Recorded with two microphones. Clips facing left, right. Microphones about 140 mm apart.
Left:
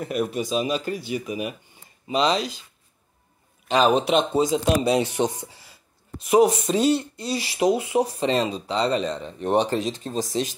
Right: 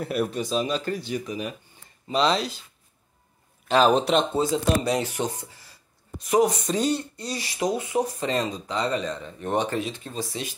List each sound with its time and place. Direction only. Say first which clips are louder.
0.0 s a man's voice: left 1 dB; centre (ahead or behind)
3.6 s a man's voice: even; centre (ahead or behind)
4.3 s speech: left 2 dB; 15° left (ahead or behind); by 10.5 s 40° left (ahead or behind)